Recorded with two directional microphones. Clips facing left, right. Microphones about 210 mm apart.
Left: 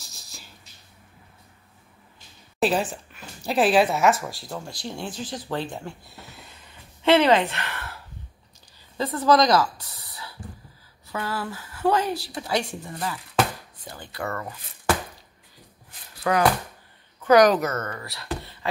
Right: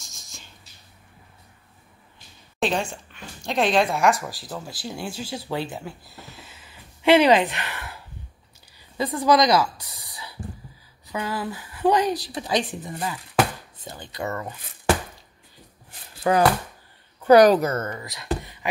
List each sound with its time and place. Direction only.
0.0 s a sound: 35° left (ahead or behind)
2.6 s a woman's voice: 5° left (ahead or behind); by 14.5 s 20° right (ahead or behind)
16.2 s speech: 30° right (ahead or behind)